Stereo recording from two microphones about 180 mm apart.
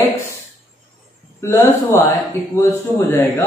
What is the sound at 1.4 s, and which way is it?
Speech, 15° left (ahead or behind).